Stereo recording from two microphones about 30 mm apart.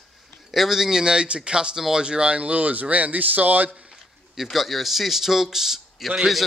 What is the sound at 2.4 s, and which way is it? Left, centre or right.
Speech, right.